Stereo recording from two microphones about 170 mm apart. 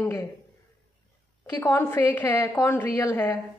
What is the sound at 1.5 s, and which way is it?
A woman's voice, 15° left (ahead or behind).